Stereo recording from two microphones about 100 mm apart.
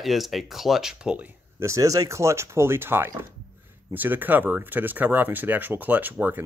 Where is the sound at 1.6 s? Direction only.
30° right (ahead or behind).